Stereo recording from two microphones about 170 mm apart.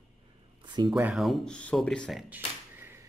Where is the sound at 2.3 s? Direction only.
10° right (ahead or behind).